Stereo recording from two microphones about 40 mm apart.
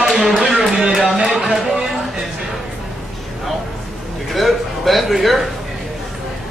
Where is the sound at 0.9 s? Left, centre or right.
Centre.